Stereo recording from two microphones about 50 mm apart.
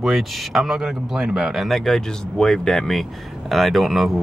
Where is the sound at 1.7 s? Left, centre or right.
Centre.